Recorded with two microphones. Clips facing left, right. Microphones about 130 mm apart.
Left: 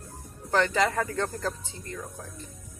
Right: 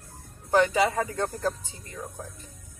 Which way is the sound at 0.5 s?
10° right (ahead or behind).